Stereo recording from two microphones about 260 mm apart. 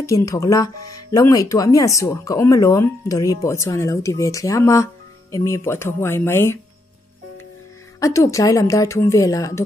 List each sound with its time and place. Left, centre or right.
0.0 s speech: centre
8.0 s speech: centre